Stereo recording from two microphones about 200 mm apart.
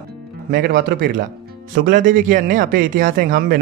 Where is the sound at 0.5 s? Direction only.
50° right (ahead or behind).